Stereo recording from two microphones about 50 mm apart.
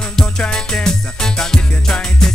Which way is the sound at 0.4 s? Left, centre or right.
Centre.